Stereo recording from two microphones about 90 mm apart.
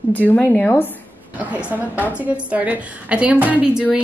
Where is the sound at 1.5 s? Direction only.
20° right (ahead or behind).